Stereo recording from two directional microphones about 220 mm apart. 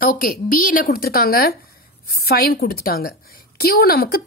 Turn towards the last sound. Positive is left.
turn(degrees=45)  # may be behind; listen again after turning